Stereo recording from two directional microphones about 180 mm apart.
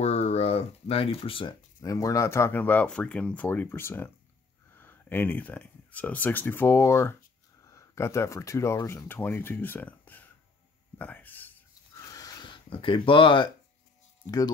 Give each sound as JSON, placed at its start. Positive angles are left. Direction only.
{"t": 0.0, "sound": "speech", "side_deg": 35}
{"t": 11.0, "sound": "a sound", "side_deg": 10}
{"t": 14.2, "sound": "speech", "side_deg": 20}